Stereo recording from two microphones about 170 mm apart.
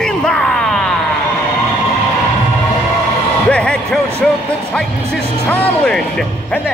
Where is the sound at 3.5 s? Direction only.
5° left (ahead or behind).